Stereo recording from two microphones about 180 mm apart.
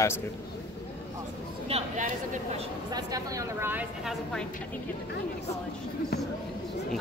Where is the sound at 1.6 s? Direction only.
40° right (ahead or behind).